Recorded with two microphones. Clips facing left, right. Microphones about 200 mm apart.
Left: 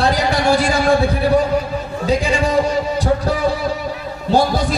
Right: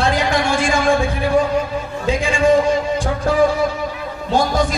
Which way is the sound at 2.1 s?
40° left (ahead or behind).